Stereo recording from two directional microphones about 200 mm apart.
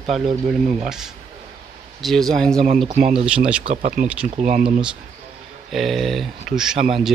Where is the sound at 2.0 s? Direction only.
Centre (ahead or behind).